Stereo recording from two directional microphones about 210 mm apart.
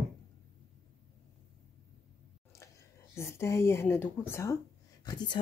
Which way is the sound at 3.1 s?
10° left (ahead or behind).